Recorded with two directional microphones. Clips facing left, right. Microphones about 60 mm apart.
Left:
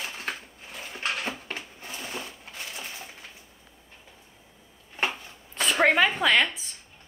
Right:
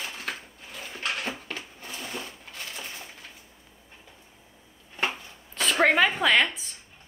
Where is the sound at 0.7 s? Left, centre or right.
Centre.